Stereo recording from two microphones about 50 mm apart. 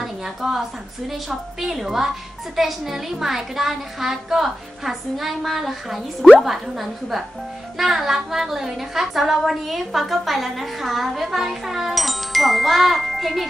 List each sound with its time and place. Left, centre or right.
0.0 s a woman's voice: centre